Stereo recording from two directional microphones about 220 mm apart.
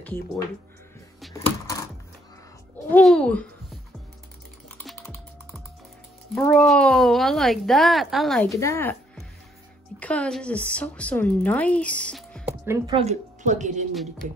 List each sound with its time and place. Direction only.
1.3 s typewriter: 15° left (ahead or behind)
2.9 s a woman's voice: 5° left (ahead or behind)
4.7 s typing: 5° left (ahead or behind)
6.3 s a woman's voice: 5° left (ahead or behind)
8.5 s a woman's voice: 10° left (ahead or behind)
12.6 s a woman's voice: 15° right (ahead or behind)
12.9 s a woman's voice: 30° right (ahead or behind)